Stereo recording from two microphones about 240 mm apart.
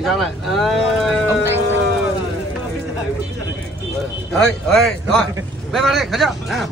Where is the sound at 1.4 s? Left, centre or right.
Centre.